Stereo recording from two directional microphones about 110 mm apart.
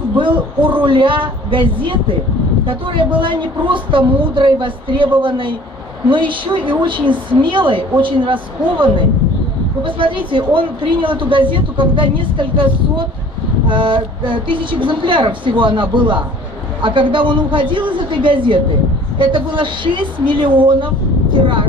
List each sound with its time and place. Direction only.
0.2 s a woman's voice: 50° right (ahead or behind)